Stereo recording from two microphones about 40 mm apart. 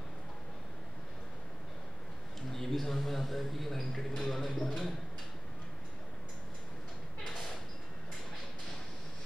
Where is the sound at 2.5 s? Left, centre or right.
Centre.